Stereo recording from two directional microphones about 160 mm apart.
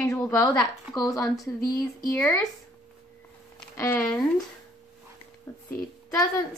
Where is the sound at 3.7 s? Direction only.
15° left (ahead or behind).